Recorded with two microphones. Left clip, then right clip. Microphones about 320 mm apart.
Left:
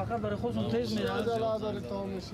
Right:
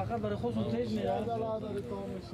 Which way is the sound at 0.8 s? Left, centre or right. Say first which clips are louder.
Even; centre.